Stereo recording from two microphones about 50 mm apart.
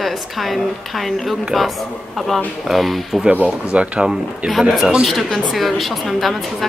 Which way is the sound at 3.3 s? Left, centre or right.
Right.